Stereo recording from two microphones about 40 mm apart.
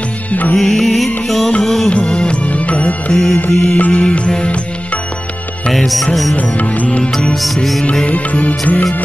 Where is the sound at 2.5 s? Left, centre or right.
Left.